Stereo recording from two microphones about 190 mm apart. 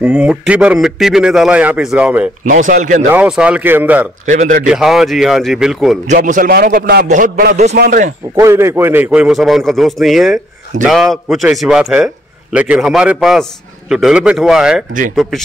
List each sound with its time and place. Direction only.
0.0 s a man's voice: 5° right (ahead or behind)
2.4 s a man's voice: 45° right (ahead or behind)
3.1 s speech: 5° right (ahead or behind)
4.3 s a man's voice: 45° right (ahead or behind)
4.6 s a man's voice: centre (ahead or behind)
6.0 s a man's voice: 45° right (ahead or behind)
8.4 s a man's voice: 15° right (ahead or behind)